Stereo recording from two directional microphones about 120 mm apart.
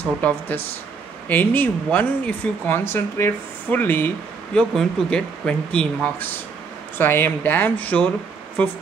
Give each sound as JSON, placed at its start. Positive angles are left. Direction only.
{"t": 0.2, "sound": "speech", "side_deg": 10}
{"t": 4.6, "sound": "speech", "side_deg": 5}